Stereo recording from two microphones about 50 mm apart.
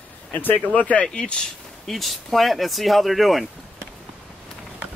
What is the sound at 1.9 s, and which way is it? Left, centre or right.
Speech, centre.